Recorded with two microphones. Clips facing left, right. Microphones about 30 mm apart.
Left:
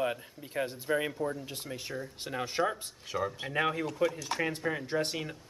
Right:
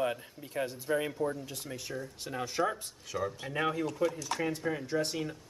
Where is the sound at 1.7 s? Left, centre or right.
Left.